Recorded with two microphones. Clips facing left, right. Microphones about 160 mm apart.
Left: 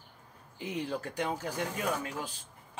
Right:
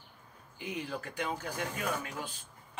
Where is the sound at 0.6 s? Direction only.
35° left (ahead or behind).